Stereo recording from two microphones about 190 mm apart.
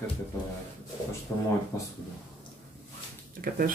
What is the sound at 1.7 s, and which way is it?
Speech, 15° left (ahead or behind).